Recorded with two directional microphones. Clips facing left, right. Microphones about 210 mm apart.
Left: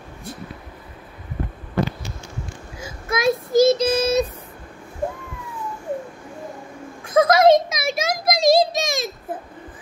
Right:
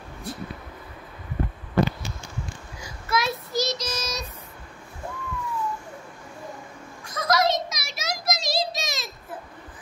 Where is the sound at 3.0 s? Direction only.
50° left (ahead or behind).